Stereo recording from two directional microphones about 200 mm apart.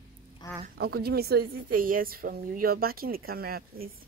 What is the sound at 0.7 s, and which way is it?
A woman's voice, 50° right (ahead or behind).